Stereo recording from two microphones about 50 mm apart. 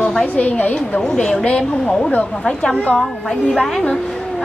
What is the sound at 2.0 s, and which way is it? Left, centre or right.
Speech, left.